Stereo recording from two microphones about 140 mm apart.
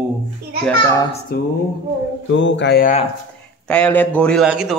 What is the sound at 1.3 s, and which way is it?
Speech, 90° left.